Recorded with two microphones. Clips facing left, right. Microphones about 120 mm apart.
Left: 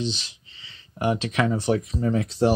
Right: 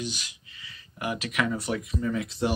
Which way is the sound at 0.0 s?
25° left (ahead or behind).